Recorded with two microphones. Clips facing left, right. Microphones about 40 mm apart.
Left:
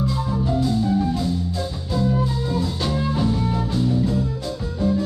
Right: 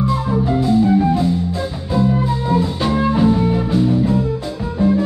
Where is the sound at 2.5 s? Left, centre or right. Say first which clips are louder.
Right 6 dB; right.